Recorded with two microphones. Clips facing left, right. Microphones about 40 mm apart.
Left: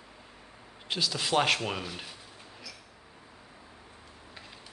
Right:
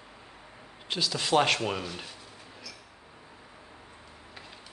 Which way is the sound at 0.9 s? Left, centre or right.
Centre.